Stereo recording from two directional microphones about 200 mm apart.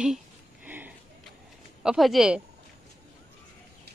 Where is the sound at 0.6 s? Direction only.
10° right (ahead or behind).